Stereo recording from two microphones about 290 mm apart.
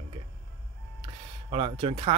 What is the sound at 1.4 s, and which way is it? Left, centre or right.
Speech, centre.